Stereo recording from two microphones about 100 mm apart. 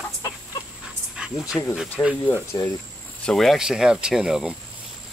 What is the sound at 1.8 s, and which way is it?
Speech, 5° right (ahead or behind).